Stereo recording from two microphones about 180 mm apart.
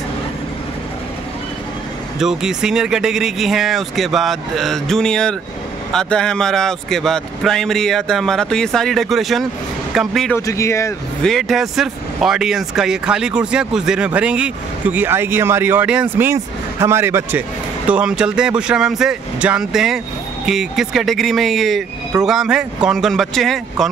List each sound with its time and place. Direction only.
2.1 s speech: 5° right (ahead or behind)
10.3 s a man's voice: 15° left (ahead or behind)
11.2 s a man's voice: centre (ahead or behind)